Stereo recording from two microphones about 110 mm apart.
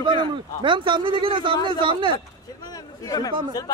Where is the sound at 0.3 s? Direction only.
45° right (ahead or behind).